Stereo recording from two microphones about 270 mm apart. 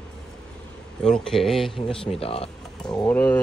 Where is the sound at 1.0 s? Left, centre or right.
Centre.